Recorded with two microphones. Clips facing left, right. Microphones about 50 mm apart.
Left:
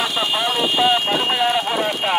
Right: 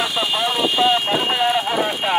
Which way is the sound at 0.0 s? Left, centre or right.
Centre.